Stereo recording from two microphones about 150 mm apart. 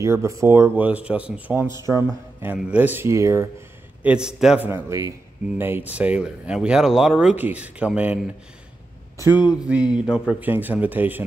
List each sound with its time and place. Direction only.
0.0 s speech: 20° right (ahead or behind)
4.0 s a man's voice: 5° right (ahead or behind)
4.6 s a man's voice: 15° right (ahead or behind)
9.3 s speech: 30° left (ahead or behind)
9.7 s speech: 5° right (ahead or behind)